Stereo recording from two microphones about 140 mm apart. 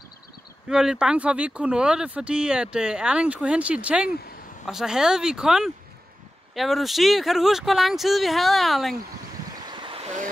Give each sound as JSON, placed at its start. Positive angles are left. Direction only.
{"t": 0.7, "sound": "speech", "side_deg": -5}
{"t": 9.7, "sound": "vehicle", "side_deg": -35}